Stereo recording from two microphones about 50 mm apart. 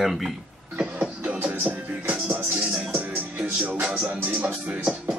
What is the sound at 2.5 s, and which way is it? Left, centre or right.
Music, centre.